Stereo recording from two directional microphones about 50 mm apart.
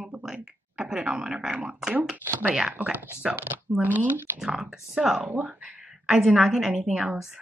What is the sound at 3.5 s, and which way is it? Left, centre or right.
Speech, right.